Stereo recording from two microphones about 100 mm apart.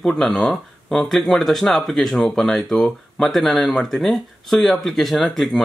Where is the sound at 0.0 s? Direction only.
5° left (ahead or behind).